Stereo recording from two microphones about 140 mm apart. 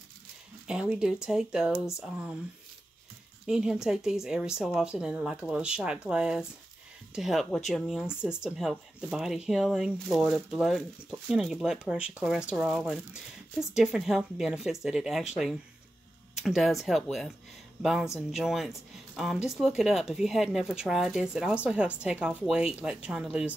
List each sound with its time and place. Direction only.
0.7 s speech: 5° right (ahead or behind)
3.4 s speech: 5° right (ahead or behind)
18.3 s a woman's voice: centre (ahead or behind)